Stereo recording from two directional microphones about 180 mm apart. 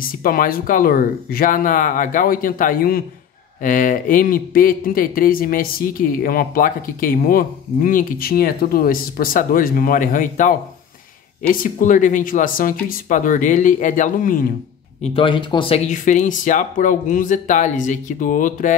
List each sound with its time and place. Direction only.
0.0 s speech: 50° left (ahead or behind)
15.0 s speech: 30° left (ahead or behind)
15.9 s speech: 45° left (ahead or behind)